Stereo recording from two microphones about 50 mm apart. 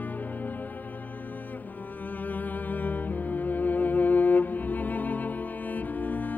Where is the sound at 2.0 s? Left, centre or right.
Left.